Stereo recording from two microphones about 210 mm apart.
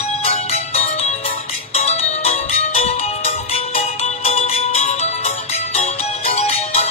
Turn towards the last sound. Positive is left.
turn(degrees=30)  # may be behind; listen again after turning